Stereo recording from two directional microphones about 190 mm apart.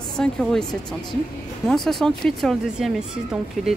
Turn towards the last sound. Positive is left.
turn(degrees=-5)  # may be behind; listen again after turning